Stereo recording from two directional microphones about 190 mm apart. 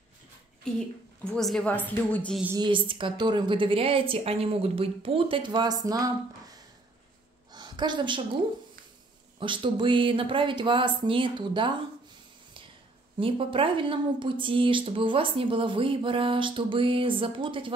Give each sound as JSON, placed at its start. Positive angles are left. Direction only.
{"t": 0.7, "sound": "a woman's voice", "side_deg": 5}
{"t": 2.4, "sound": "speech", "side_deg": -20}
{"t": 7.5, "sound": "a sound", "side_deg": -25}
{"t": 9.4, "sound": "speech", "side_deg": -25}
{"t": 13.2, "sound": "speech", "side_deg": -30}